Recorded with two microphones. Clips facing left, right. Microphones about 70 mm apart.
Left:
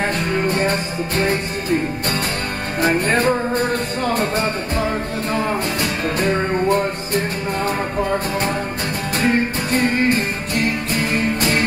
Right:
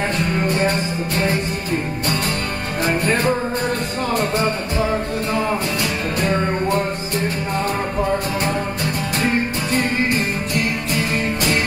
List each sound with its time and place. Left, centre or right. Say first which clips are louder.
0.2 s music: even; left
6.1 s music: left 1 dB; left
9.2 s music: left 3 dB; left